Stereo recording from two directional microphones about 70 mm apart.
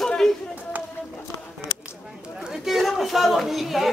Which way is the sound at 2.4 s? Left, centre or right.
Centre.